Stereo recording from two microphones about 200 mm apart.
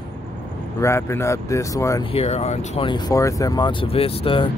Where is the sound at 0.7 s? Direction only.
15° left (ahead or behind).